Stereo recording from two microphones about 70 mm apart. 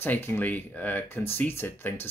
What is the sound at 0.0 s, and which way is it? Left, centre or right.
Speech, left.